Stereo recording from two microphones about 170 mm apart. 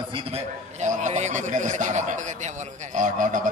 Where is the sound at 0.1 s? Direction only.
40° right (ahead or behind).